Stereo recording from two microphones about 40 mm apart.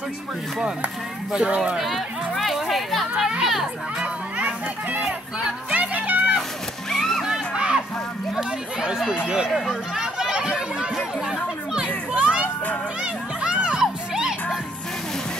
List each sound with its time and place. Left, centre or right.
1.8 s a sound: centre
3.2 s children playing: right
5.7 s music: right
6.9 s music: centre
7.2 s crowd: right
8.4 s chatter: centre
12.1 s a child's voice: right
13.0 s crowd: right
14.1 s music: centre